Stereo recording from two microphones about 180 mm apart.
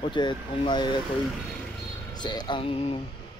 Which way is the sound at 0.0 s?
25° left (ahead or behind).